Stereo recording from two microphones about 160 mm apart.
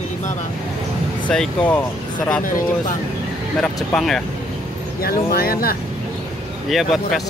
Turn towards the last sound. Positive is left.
turn(degrees=0)  # may be behind; listen again after turning